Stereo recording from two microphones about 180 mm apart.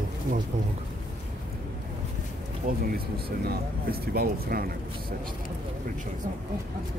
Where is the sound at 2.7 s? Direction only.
50° right (ahead or behind).